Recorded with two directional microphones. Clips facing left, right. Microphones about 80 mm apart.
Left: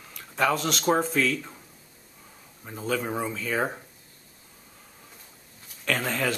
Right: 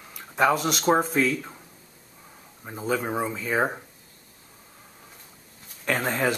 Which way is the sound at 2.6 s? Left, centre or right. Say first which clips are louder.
Right 2 dB; centre.